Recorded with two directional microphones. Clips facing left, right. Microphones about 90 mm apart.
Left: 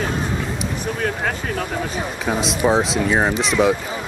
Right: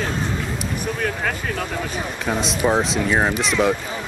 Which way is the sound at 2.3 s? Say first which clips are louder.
Left 2 dB; centre (ahead or behind).